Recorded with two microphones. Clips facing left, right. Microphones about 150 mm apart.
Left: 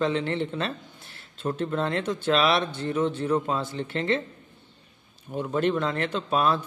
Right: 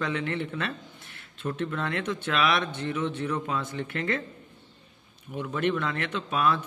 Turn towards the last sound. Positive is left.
turn(degrees=35)  # may be behind; listen again after turning